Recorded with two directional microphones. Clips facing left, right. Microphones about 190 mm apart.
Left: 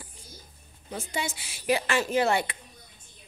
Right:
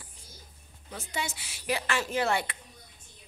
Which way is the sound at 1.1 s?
10° left (ahead or behind).